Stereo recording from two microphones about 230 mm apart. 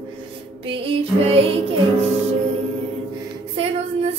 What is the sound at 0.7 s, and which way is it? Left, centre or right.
Music, right.